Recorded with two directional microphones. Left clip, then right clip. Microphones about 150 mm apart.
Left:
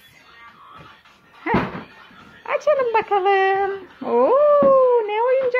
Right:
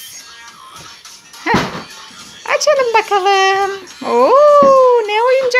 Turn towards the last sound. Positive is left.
turn(degrees=-10)  # may be behind; listen again after turning